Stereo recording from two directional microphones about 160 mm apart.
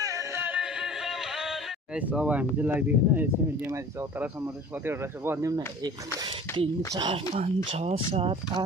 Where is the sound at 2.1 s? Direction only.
10° right (ahead or behind).